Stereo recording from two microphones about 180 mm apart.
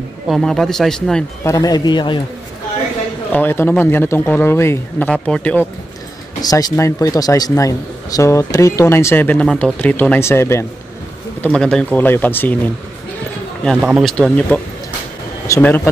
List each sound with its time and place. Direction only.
0.3 s speech: centre (ahead or behind)
1.4 s a man's voice: 20° left (ahead or behind)
3.3 s speech: 10° left (ahead or behind)
6.4 s speech: 20° left (ahead or behind)
13.7 s speech: 5° right (ahead or behind); by 15.9 s 15° left (ahead or behind)